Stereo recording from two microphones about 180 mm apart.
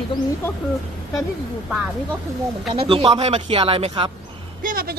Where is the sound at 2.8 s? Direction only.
30° right (ahead or behind).